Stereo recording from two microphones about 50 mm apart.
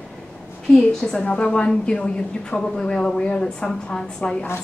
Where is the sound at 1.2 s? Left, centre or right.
Left.